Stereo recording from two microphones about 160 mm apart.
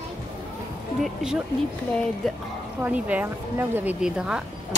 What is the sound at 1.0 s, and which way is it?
Speech, 5° right (ahead or behind).